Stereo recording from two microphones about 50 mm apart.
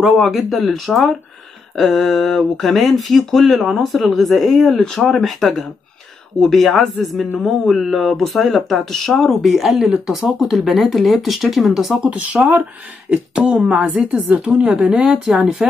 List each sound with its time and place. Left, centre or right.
0.2 s speech: centre
12.1 s a woman's voice: right